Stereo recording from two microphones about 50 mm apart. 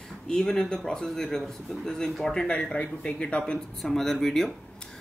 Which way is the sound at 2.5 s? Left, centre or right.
Left.